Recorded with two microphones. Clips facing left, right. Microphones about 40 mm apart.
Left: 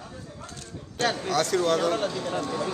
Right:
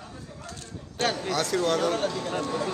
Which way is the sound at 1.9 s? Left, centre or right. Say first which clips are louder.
Even; left.